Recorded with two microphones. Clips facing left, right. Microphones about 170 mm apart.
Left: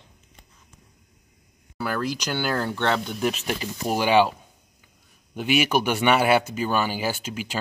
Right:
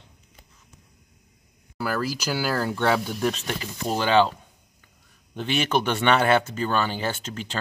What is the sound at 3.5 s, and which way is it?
Speech, 10° left (ahead or behind).